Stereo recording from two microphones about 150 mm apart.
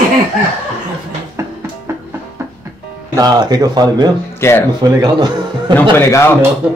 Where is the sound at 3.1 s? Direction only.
25° right (ahead or behind).